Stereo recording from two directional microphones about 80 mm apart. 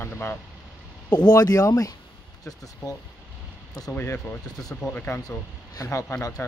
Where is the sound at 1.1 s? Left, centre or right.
Left.